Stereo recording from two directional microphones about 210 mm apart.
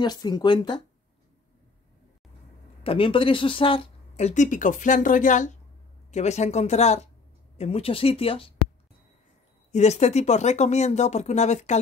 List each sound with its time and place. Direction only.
0.0 s speech: 20° left (ahead or behind)
2.8 s speech: 25° left (ahead or behind)
9.7 s speech: 35° left (ahead or behind)